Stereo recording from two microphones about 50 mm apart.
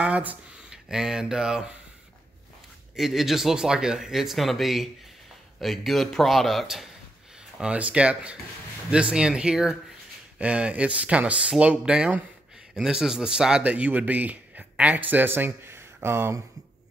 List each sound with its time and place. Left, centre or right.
0.7 s speech: centre
3.0 s speech: centre
7.7 s speech: right
12.7 s speech: centre
13.7 s speech: right